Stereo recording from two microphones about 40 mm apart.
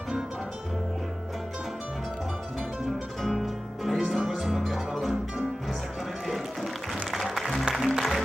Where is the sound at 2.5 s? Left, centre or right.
Centre.